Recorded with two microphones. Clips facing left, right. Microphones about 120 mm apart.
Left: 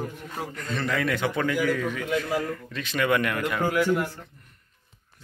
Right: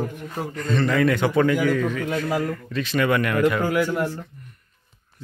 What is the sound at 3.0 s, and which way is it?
Speech, 15° left (ahead or behind).